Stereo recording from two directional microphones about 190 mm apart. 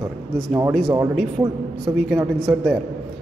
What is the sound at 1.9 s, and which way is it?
Speech, 10° right (ahead or behind).